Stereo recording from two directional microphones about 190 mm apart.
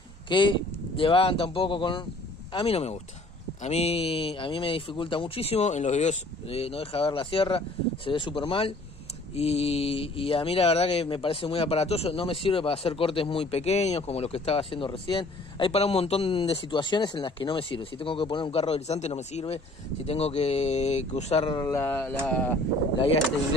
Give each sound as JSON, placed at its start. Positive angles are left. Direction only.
{"t": 0.3, "sound": "speech", "side_deg": 25}
{"t": 21.5, "sound": "speech", "side_deg": 15}